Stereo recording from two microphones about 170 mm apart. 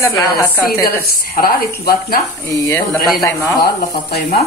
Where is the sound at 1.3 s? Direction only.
60° left (ahead or behind).